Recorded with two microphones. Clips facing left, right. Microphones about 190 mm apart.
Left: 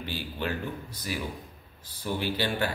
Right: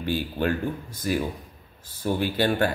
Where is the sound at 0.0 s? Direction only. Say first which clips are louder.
Right 8 dB; 50° right (ahead or behind).